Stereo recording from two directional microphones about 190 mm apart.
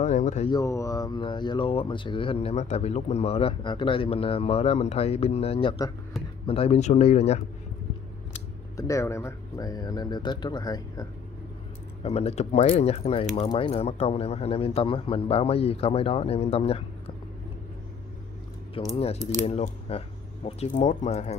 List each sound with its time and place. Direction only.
0.0 s a sound: 40° left (ahead or behind)
0.5 s speech: 15° left (ahead or behind); by 7.4 s 35° left (ahead or behind)
8.7 s speech: 15° left (ahead or behind)
12.0 s speech: 35° left (ahead or behind)
18.9 s speech: 30° left (ahead or behind)